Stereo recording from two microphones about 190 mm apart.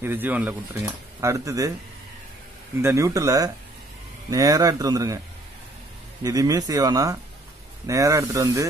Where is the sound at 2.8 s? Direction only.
15° right (ahead or behind).